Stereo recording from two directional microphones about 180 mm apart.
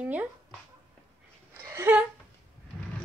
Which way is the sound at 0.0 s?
10° right (ahead or behind).